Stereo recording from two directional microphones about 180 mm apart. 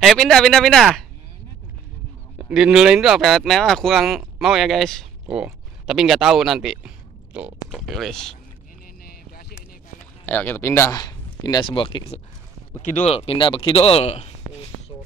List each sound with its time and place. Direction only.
0.0 s speech: 5° left (ahead or behind)
2.3 s speech: 5° right (ahead or behind)
9.0 s a sound: 55° left (ahead or behind)
10.2 s speech: 10° left (ahead or behind); by 14.3 s 35° left (ahead or behind)